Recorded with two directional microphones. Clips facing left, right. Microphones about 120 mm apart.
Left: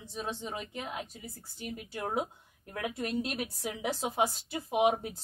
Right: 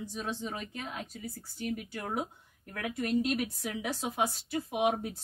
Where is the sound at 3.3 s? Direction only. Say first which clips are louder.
Right 3 dB; 30° left (ahead or behind).